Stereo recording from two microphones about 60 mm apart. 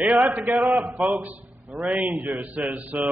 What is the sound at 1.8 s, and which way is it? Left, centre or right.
A man's voice, right.